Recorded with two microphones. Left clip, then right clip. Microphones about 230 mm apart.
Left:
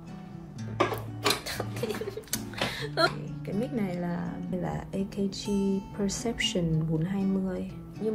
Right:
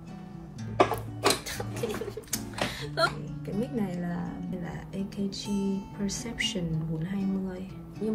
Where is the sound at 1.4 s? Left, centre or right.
Centre.